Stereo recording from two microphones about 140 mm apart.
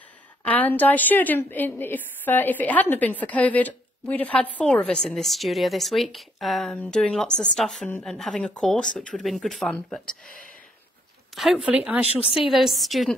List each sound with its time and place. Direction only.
0.4 s a woman's voice: 10° left (ahead or behind)
11.3 s speech: 5° right (ahead or behind)
12.2 s a woman's voice: 40° left (ahead or behind)
12.4 s speech: centre (ahead or behind)